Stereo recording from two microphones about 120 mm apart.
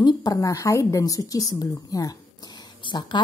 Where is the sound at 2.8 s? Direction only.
40° left (ahead or behind).